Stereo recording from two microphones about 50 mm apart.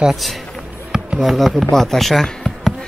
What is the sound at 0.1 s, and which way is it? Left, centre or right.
Speech, centre.